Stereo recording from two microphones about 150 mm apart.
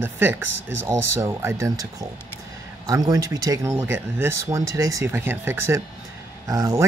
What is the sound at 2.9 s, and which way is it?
Speech, 25° right (ahead or behind).